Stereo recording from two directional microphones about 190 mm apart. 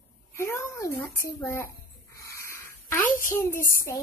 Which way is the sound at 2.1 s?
15° left (ahead or behind).